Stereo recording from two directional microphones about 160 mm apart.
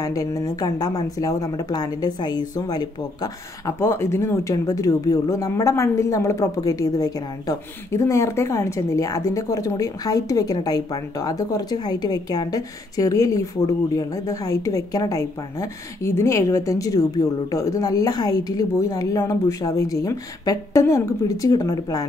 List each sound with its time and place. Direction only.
0.0 s speech: 20° left (ahead or behind)